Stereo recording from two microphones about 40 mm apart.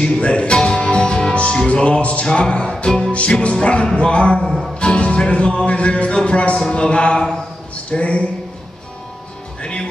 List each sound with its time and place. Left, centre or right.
0.0 s speech: left
1.3 s music: left
2.3 s speech: left
3.1 s speech: left
4.7 s music: left
5.7 s speech: left
7.7 s a sound: left
9.6 s music: left